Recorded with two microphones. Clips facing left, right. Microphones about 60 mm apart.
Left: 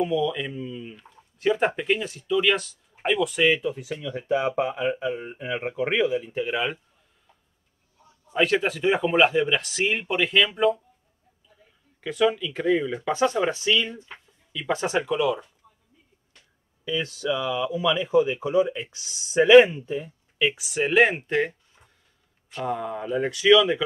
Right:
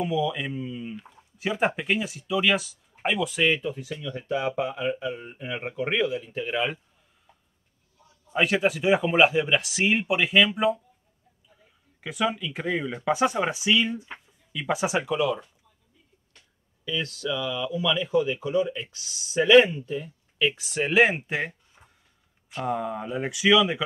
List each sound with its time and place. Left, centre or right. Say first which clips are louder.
0.0 s speech: left 2 dB; centre
3.9 s speech: left 5 dB; left
6.4 s speech: left 1 dB; centre
8.3 s speech: left 1 dB; centre
12.0 s speech: left 4 dB; centre
16.8 s speech: left 3 dB; centre
21.8 s a sound: right 2 dB; centre
22.5 s speech: even; centre